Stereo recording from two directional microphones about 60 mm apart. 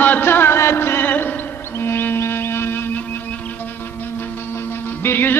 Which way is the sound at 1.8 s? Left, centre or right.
Left.